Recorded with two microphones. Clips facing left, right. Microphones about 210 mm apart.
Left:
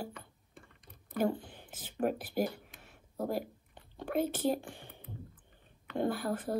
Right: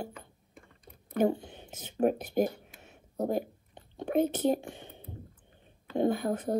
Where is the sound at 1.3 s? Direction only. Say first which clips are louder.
Right 4 dB; 25° right (ahead or behind).